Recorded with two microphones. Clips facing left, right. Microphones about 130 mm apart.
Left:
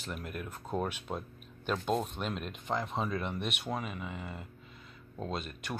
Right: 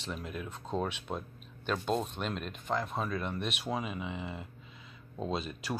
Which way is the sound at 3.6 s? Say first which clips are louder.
Right 2 dB; 5° right (ahead or behind).